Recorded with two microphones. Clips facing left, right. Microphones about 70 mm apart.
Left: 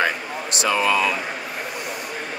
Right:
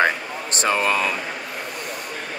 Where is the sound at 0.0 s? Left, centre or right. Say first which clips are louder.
Right 2 dB; right.